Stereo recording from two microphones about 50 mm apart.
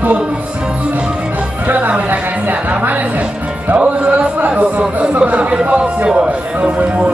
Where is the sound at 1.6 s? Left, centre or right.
Right.